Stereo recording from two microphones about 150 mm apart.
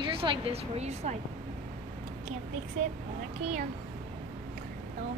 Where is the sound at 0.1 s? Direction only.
35° right (ahead or behind).